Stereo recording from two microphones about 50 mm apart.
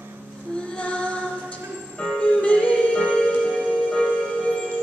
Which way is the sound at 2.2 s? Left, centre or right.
Left.